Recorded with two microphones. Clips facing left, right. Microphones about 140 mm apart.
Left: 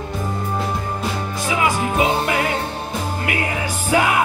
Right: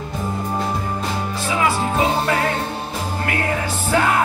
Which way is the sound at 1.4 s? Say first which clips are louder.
Even; 15° left (ahead or behind).